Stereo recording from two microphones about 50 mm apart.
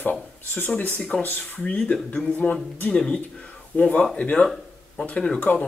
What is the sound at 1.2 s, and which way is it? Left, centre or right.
Speech, left.